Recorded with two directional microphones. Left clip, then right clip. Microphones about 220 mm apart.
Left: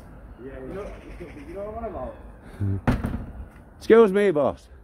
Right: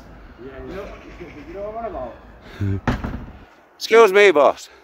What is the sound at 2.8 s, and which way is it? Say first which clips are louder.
Speech: right 2 dB; 35° left (ahead or behind).